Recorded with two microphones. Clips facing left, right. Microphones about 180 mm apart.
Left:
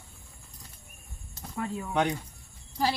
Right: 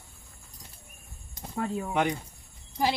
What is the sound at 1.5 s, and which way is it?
Speech, 35° right (ahead or behind).